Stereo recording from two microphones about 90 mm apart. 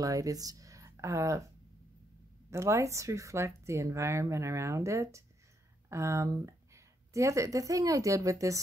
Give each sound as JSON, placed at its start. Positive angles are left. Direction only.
{"t": 0.0, "sound": "speech", "side_deg": -40}
{"t": 2.5, "sound": "speech", "side_deg": -35}